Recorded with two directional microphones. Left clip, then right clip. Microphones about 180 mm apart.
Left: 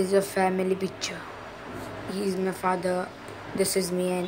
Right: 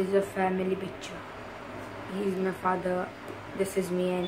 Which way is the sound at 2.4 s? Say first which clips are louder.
Left 3 dB; 30° left (ahead or behind).